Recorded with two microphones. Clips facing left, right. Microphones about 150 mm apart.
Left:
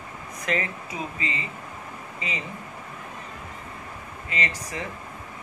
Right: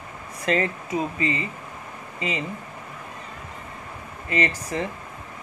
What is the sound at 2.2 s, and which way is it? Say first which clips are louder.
Speech: right 6 dB; 30° right (ahead or behind).